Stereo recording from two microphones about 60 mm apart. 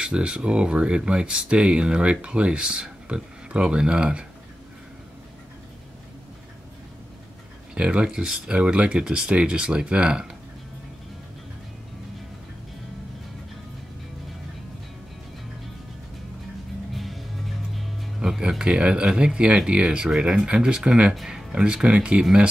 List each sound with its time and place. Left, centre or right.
0.0 s speech: centre
7.7 s speech: centre
16.9 s music: centre
18.2 s speech: centre
21.1 s speech: centre
21.5 s speech: centre